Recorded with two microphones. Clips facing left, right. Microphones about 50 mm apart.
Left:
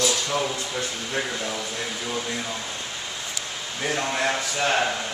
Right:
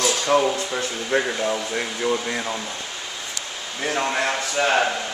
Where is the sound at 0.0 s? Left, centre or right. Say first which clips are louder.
Right 5 dB; right.